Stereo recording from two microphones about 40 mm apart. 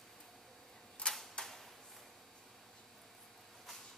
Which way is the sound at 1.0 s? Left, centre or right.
Left.